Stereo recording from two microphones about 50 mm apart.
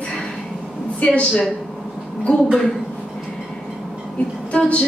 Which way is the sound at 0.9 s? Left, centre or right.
Left.